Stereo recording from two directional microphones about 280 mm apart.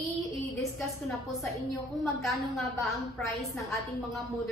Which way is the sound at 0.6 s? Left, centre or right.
Centre.